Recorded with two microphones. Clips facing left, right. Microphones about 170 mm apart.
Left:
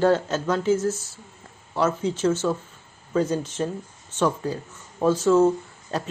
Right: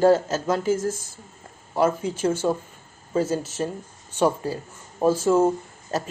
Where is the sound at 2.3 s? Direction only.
10° right (ahead or behind).